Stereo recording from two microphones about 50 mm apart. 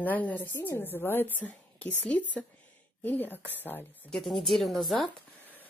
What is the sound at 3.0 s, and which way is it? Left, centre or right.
Speech, left.